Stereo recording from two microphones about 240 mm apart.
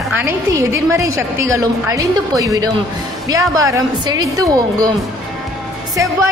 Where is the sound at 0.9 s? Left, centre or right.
Centre.